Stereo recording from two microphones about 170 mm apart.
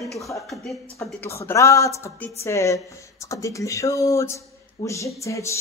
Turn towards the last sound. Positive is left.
turn(degrees=15)  # may be behind; listen again after turning